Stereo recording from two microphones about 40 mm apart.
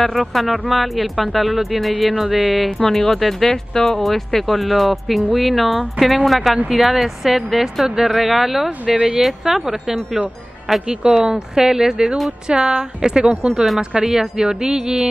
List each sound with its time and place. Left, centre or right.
0.0 s speech: centre
2.8 s speech: centre